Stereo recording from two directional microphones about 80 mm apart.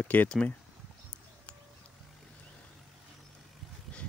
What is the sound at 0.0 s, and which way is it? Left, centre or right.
Speech, left.